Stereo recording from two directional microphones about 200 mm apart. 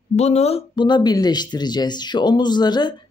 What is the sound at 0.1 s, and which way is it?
A woman's voice, 35° left (ahead or behind).